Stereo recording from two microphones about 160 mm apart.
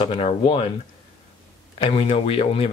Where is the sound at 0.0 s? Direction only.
30° left (ahead or behind).